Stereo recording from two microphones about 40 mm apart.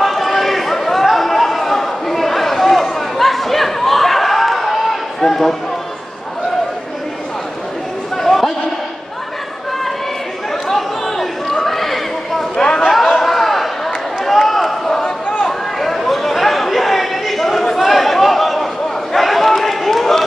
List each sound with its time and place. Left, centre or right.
0.0 s chatter: centre
8.2 s a sound: centre
10.7 s chatter: centre
12.5 s chatter: centre
13.0 s a sound: centre
15.8 s chatter: centre
19.1 s run: centre